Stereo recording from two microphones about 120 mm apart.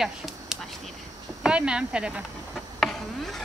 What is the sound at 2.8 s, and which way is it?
Insect, centre (ahead or behind).